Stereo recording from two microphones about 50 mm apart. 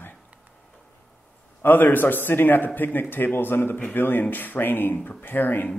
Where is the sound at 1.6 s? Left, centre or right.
Left.